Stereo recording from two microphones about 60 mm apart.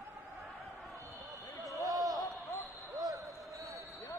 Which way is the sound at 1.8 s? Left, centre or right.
Right.